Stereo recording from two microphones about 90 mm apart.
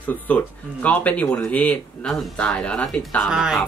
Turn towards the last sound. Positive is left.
turn(degrees=-5)  # may be behind; listen again after turning